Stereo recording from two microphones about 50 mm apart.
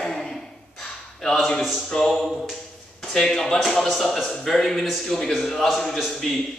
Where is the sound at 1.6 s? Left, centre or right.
Centre.